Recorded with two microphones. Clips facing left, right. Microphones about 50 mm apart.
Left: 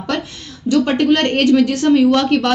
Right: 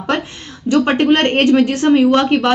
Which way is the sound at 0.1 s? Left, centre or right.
Right.